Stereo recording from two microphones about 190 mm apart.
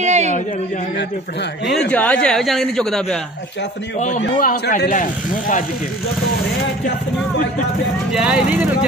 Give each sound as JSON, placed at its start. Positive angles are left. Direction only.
{"t": 0.0, "sound": "a sound", "side_deg": -35}
{"t": 1.7, "sound": "speech", "side_deg": 5}
{"t": 4.4, "sound": "speech", "side_deg": 40}
{"t": 8.1, "sound": "speech", "side_deg": 0}